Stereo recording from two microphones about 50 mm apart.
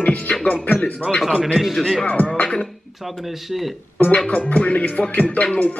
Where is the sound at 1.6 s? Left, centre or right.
Centre.